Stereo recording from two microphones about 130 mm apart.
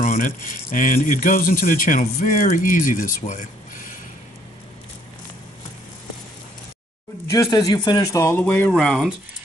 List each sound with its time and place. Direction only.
0.0 s speech: 90° left
7.2 s speech: 30° left (ahead or behind)
8.2 s speech: 20° left (ahead or behind)
8.7 s speech: centre (ahead or behind)